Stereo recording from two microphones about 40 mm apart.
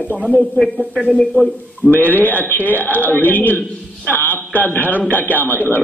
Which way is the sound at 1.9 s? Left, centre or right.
Left.